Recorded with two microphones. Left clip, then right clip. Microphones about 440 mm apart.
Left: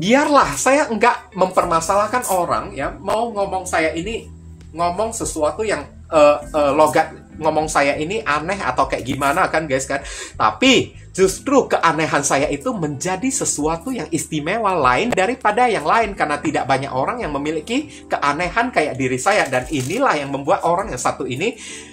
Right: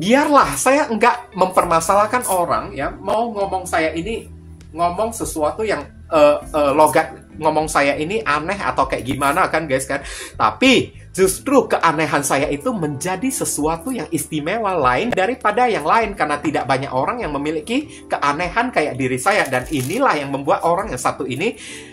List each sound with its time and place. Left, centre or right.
0.0 s speech: right